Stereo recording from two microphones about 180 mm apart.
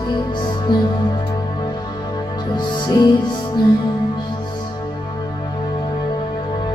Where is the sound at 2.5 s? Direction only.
25° left (ahead or behind).